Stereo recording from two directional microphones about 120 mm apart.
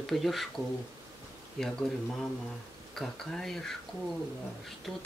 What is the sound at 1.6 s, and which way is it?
Speech, centre (ahead or behind).